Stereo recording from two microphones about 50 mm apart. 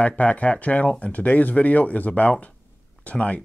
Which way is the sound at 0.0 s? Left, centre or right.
Left.